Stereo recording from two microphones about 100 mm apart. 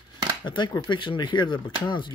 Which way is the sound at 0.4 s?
50° left (ahead or behind).